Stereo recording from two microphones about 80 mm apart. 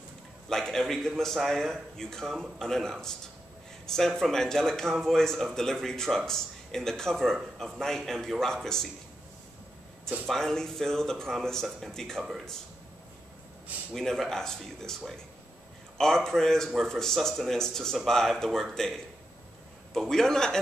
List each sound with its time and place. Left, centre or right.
0.5 s speech: centre
10.2 s speech: centre
13.9 s speech: centre